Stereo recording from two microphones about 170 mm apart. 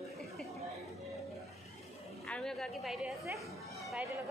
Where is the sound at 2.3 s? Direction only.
Centre (ahead or behind).